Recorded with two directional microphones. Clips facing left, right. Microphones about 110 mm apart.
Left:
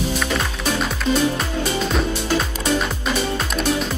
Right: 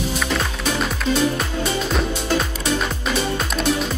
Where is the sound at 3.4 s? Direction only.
Centre (ahead or behind).